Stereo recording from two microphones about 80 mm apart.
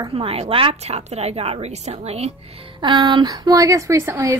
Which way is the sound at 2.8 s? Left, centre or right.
Right.